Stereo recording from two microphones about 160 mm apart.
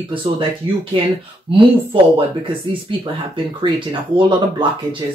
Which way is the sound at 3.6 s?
30° right (ahead or behind).